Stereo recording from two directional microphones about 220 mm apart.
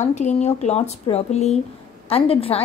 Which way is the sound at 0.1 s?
30° left (ahead or behind).